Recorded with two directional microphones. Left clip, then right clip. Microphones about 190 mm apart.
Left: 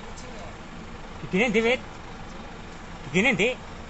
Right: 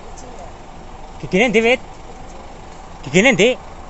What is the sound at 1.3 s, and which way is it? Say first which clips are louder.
Speech: right 8 dB; 25° right (ahead or behind).